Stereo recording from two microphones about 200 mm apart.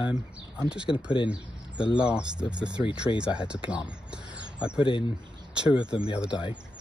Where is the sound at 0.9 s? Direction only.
25° left (ahead or behind).